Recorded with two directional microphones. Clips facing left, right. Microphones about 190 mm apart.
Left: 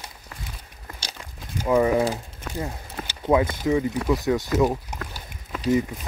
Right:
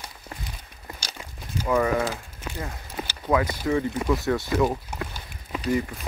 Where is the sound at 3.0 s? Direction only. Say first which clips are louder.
Left 3 dB; 20° left (ahead or behind).